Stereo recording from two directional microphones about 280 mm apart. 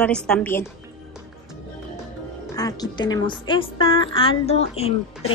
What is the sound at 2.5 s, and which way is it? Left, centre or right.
A woman's voice, centre.